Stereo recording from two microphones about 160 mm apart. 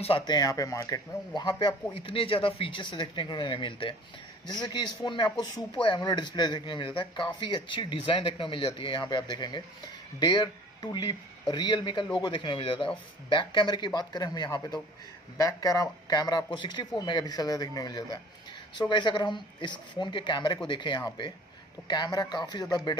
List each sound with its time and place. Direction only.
0.0 s speech: 30° left (ahead or behind)